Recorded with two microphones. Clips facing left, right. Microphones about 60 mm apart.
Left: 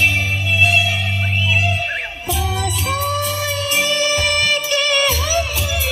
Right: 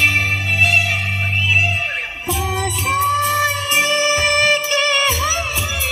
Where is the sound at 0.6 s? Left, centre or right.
Right.